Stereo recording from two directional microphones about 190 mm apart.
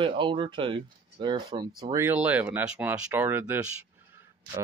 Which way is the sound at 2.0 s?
10° right (ahead or behind).